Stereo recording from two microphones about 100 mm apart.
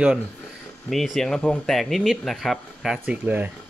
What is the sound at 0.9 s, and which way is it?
Speech, centre (ahead or behind).